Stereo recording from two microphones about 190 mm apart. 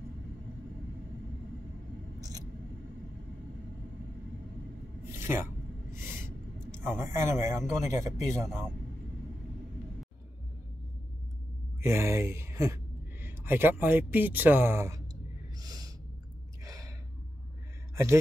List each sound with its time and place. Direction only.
5.2 s speech: 15° right (ahead or behind)
5.9 s a sound: 15° right (ahead or behind)
6.8 s speech: 10° right (ahead or behind)
11.8 s speech: 15° right (ahead or behind)
15.6 s snort: 20° right (ahead or behind)
16.6 s gasp: 20° right (ahead or behind)